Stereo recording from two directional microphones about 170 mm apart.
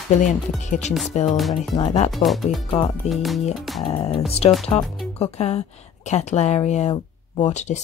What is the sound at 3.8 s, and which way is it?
A woman's voice, 35° left (ahead or behind).